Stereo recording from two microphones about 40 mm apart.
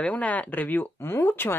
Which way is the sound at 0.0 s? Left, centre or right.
Left.